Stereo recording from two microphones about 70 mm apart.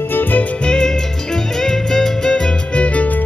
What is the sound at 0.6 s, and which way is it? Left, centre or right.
Music, centre.